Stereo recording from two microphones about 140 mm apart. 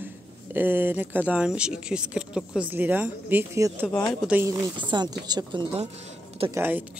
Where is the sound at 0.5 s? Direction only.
15° right (ahead or behind).